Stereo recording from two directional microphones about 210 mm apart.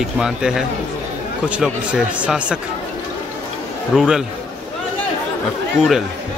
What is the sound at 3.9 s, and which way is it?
Speech, 5° right (ahead or behind).